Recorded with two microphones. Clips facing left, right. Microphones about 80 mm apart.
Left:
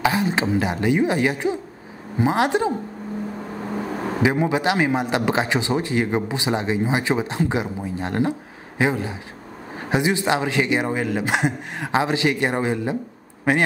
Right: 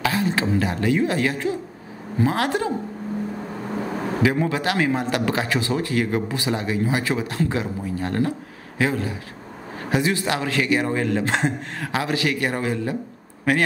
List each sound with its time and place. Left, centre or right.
0.0 s speech: centre
4.2 s speech: left